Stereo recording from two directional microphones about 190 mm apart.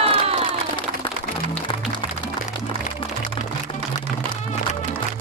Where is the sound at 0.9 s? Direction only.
30° right (ahead or behind).